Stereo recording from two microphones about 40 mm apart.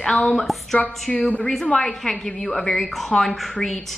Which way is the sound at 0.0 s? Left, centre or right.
Left.